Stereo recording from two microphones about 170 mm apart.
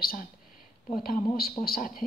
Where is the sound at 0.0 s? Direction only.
60° left (ahead or behind).